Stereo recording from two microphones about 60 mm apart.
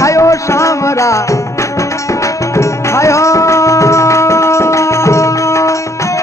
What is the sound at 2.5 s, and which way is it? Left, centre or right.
Music, left.